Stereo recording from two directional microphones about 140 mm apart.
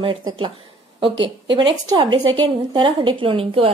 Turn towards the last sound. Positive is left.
turn(degrees=-40)  # may be behind; listen again after turning